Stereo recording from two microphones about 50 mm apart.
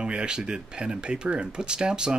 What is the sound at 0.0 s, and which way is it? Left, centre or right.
Speech, centre.